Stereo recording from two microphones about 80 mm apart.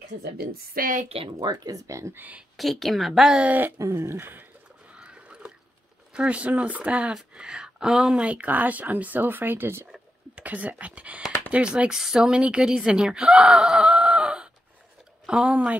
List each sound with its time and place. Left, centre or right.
1.4 s speech: right
2.1 s speech: right
2.5 s a woman's voice: centre
3.4 s speech: right
3.7 s speech: right
4.8 s rowboat: centre
6.1 s speech: centre